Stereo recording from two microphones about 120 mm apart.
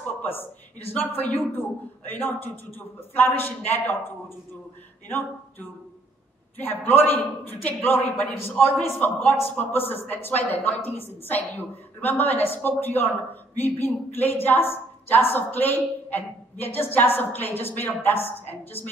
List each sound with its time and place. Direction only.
0.0 s a woman's voice: 15° left (ahead or behind)